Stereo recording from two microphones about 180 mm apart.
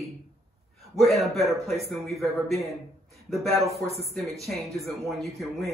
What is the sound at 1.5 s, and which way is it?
Speech, centre (ahead or behind).